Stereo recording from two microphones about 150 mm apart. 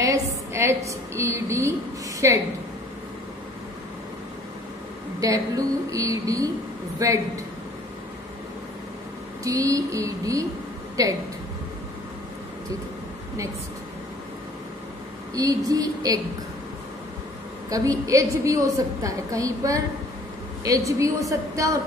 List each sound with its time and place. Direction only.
0.0 s a woman's voice: 20° right (ahead or behind)
5.2 s a woman's voice: 20° right (ahead or behind)
9.4 s a woman's voice: 20° right (ahead or behind)
15.3 s a woman's voice: 25° right (ahead or behind)
17.6 s a woman's voice: 25° right (ahead or behind)